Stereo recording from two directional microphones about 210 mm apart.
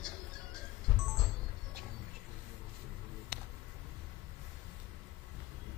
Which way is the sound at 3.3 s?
45° right (ahead or behind).